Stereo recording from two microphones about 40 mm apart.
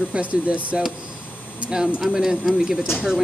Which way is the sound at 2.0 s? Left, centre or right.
Centre.